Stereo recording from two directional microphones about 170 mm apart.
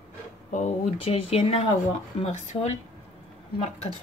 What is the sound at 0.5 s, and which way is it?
Speech, 40° left (ahead or behind).